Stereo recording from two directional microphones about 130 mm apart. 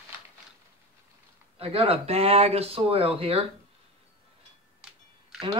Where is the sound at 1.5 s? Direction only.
50° right (ahead or behind).